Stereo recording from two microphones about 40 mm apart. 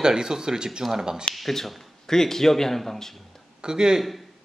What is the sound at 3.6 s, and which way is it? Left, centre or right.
Speech, centre.